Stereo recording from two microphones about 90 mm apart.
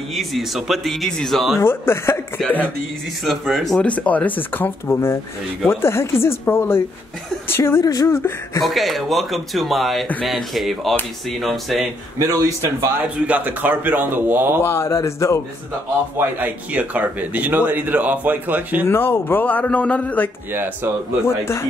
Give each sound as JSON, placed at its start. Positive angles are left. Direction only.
{"t": 0.1, "sound": "speech", "side_deg": 0}
{"t": 1.6, "sound": "speech", "side_deg": 25}
{"t": 3.3, "sound": "speech", "side_deg": 0}
{"t": 3.8, "sound": "speech", "side_deg": 15}
{"t": 7.8, "sound": "a sound", "side_deg": 45}
{"t": 8.6, "sound": "speech", "side_deg": 0}
{"t": 12.2, "sound": "a man's voice", "side_deg": -35}
{"t": 13.0, "sound": "a man's voice", "side_deg": -20}
{"t": 14.6, "sound": "speech", "side_deg": 30}
{"t": 16.3, "sound": "a man's voice", "side_deg": -20}
{"t": 18.9, "sound": "speech", "side_deg": 25}
{"t": 20.5, "sound": "a man's voice", "side_deg": -25}
{"t": 21.3, "sound": "speech", "side_deg": 30}